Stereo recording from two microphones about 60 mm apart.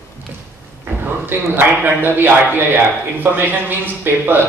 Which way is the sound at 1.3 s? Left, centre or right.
Right.